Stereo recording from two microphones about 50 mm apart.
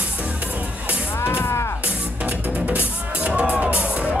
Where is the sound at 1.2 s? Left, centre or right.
Left.